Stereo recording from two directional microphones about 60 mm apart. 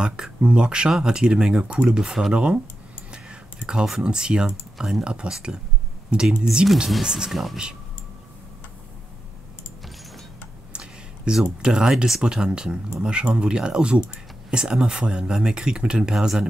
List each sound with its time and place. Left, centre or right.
0.0 s speech: centre
10.7 s a sound: centre
11.6 s speech: centre